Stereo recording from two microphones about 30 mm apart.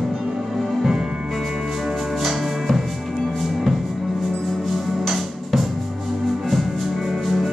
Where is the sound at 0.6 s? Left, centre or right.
Centre.